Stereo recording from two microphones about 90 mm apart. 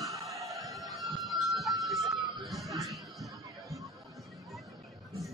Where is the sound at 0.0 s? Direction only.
35° right (ahead or behind).